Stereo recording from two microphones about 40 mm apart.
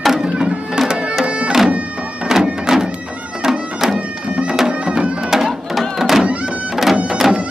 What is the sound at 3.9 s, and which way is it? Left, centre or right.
Music, right.